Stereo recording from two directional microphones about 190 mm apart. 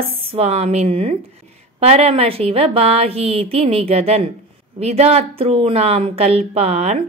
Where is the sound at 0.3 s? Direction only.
35° right (ahead or behind).